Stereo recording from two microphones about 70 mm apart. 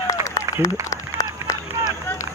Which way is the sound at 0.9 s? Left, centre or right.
Left.